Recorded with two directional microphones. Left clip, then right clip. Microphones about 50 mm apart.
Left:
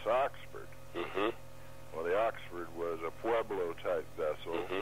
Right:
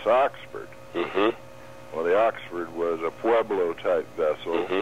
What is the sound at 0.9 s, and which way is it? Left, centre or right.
Speech, left.